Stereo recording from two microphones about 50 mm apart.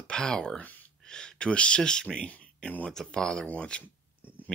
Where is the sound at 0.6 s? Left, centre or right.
Left.